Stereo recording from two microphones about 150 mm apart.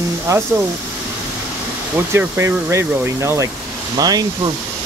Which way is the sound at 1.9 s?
15° right (ahead or behind).